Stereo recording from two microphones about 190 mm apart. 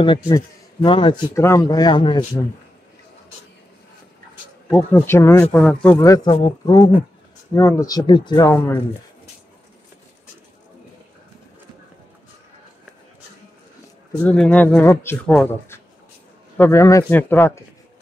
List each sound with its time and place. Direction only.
0.0 s a man's voice: 25° left (ahead or behind)
4.6 s speech: 10° left (ahead or behind)
5.9 s a man's voice: 20° left (ahead or behind)
14.2 s speech: 5° left (ahead or behind)